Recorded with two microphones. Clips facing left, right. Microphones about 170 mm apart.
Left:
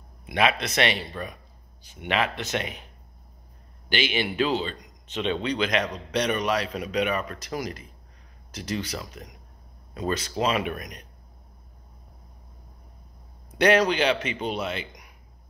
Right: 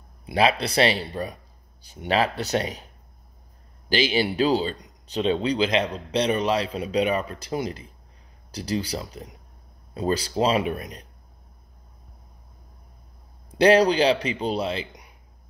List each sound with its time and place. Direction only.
0.3 s speech: 30° right (ahead or behind)
3.9 s speech: 35° right (ahead or behind)
13.5 s speech: 30° right (ahead or behind)